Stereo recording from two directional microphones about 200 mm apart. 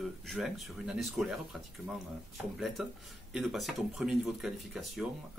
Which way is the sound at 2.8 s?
5° right (ahead or behind).